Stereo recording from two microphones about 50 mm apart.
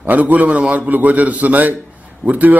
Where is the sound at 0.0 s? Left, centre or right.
Right.